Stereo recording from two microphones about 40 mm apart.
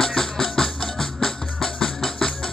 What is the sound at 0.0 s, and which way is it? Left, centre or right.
Music, centre.